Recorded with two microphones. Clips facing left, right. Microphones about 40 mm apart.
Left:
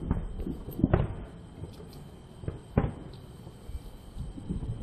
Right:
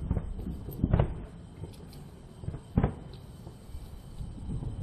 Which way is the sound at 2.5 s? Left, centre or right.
Left.